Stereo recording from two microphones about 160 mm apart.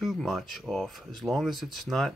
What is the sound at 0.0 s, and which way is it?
Speech, centre (ahead or behind).